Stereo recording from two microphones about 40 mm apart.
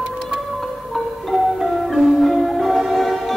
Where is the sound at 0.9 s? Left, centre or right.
Centre.